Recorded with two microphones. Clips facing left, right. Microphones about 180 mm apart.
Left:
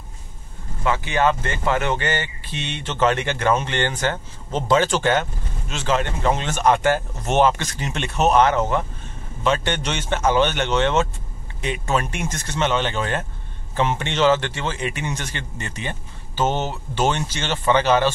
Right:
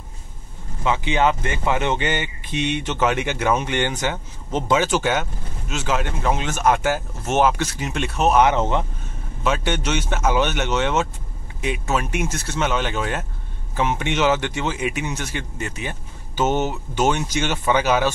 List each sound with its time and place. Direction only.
0.8 s speech: 15° right (ahead or behind); by 8.5 s centre (ahead or behind)
8.5 s speech: 20° right (ahead or behind)
9.4 s speech: 5° right (ahead or behind)